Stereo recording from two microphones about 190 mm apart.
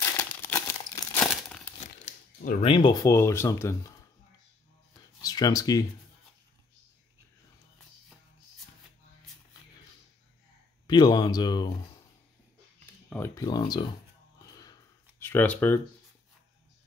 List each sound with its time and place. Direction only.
0.0 s crumpling: 10° left (ahead or behind)
2.6 s speech: 25° left (ahead or behind)
5.2 s speech: 20° left (ahead or behind)
10.9 s speech: 20° left (ahead or behind)
13.1 s speech: 15° left (ahead or behind)
14.5 s a sound: 20° left (ahead or behind)